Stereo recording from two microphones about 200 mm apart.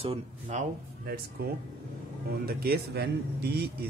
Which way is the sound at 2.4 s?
50° right (ahead or behind).